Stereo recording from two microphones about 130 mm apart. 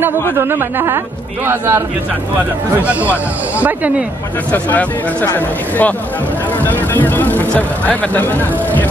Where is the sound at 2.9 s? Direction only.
10° right (ahead or behind).